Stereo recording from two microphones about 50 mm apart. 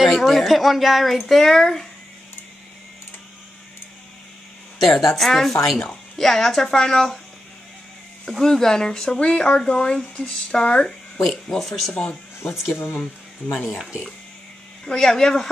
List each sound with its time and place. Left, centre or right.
0.0 s speech: centre
4.7 s speech: centre
8.3 s speech: centre
11.5 s speech: centre
11.9 s speech: left
12.6 s speech: left
13.5 s speech: left
14.9 s speech: centre